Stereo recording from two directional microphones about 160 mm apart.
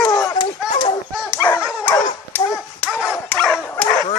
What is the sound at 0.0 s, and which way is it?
Run, 20° left (ahead or behind).